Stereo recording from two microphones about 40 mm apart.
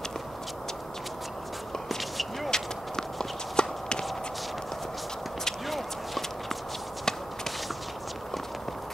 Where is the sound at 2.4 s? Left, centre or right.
Centre.